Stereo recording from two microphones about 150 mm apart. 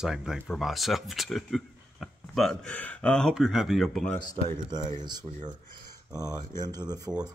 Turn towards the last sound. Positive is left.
turn(degrees=-25)  # may be behind; listen again after turning